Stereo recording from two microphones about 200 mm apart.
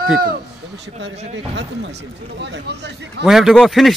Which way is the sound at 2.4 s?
60° right (ahead or behind).